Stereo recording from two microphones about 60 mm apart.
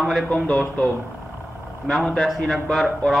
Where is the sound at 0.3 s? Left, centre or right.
Centre.